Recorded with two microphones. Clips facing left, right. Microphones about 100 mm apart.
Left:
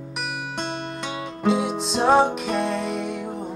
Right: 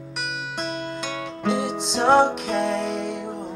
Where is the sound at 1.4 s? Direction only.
Centre (ahead or behind).